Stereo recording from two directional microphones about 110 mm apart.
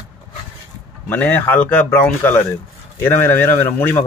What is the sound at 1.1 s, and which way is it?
Speech, 15° left (ahead or behind).